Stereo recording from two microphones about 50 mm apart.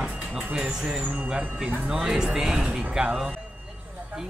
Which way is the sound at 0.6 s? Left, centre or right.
Centre.